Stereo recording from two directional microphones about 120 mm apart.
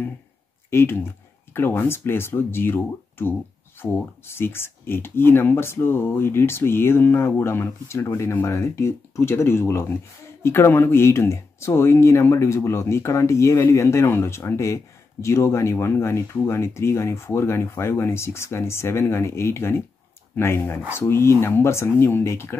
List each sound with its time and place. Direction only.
0.7 s speech: 20° left (ahead or behind)